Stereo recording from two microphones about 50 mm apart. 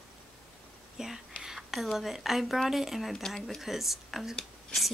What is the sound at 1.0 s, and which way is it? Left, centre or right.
Speech, centre.